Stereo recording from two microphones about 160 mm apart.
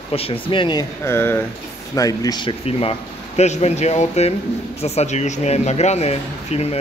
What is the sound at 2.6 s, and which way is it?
Speech, 40° left (ahead or behind).